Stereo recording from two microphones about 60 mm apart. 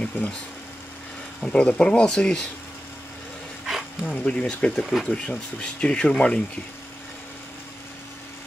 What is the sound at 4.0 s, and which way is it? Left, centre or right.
Speech, left.